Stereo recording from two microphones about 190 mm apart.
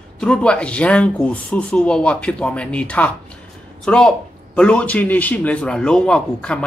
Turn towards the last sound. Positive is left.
turn(degrees=5)  # may be behind; listen again after turning